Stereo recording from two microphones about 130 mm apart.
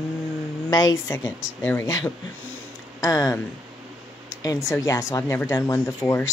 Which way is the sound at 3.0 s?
25° left (ahead or behind).